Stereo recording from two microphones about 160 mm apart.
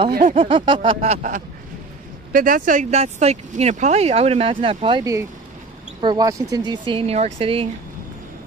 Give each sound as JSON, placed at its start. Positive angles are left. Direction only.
{"t": 0.1, "sound": "a sound", "side_deg": -55}
{"t": 0.4, "sound": "speech", "side_deg": -30}
{"t": 2.3, "sound": "speech", "side_deg": -60}